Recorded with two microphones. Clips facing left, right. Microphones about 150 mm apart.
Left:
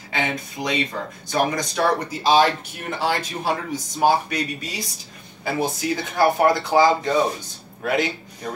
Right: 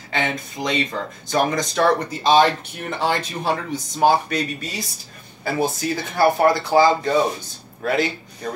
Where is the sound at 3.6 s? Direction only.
10° left (ahead or behind).